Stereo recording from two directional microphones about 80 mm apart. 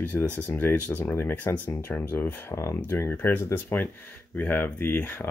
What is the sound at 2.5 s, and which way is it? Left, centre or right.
Speech, left.